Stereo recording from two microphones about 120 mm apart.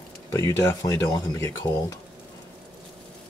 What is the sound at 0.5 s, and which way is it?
Speech, 25° left (ahead or behind).